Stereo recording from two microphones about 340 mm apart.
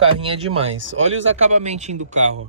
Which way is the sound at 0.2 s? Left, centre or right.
Centre.